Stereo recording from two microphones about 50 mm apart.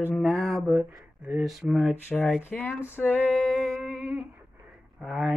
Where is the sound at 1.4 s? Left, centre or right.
Centre.